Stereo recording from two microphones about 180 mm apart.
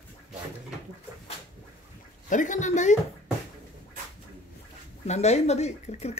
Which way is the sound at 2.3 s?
45° left (ahead or behind).